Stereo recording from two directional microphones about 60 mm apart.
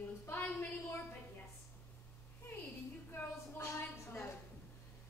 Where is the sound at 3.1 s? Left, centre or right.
Left.